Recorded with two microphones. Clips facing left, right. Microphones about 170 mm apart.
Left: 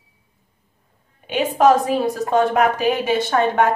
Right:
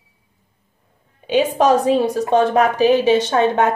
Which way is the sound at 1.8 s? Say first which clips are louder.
Right 4 dB; 25° right (ahead or behind).